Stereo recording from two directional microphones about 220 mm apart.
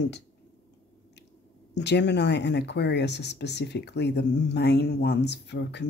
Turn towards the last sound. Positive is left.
turn(degrees=50)  # may be behind; listen again after turning